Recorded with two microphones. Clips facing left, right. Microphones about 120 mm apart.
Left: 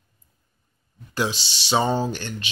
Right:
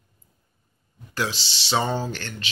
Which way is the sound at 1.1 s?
15° left (ahead or behind).